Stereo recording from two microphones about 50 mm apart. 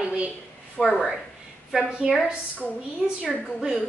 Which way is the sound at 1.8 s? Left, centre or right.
Centre.